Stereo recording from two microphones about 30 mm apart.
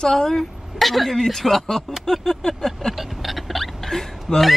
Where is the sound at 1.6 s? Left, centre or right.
Centre.